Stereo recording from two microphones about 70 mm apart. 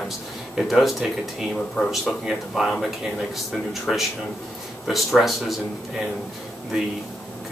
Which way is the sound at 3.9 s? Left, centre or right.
Centre.